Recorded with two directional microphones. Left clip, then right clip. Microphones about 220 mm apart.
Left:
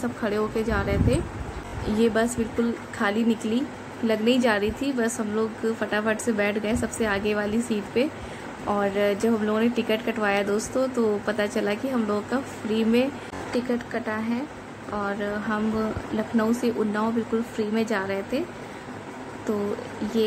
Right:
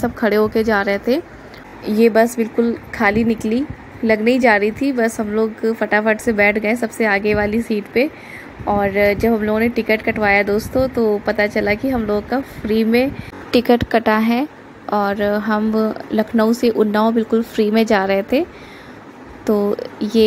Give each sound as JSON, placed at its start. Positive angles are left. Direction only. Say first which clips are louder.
{"t": 0.0, "sound": "a woman's voice", "louder": "right 10 dB", "side_deg": -30}
{"t": 13.5, "sound": "a woman's voice", "louder": "right 14 dB", "side_deg": -40}